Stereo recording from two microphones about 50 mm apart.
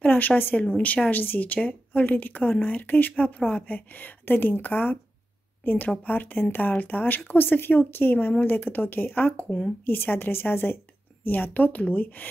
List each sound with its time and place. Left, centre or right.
0.0 s a woman's voice: left
1.2 s speech: left
6.0 s a woman's voice: left